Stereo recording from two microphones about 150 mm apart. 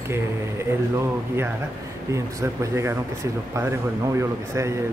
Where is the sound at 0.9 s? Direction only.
15° right (ahead or behind).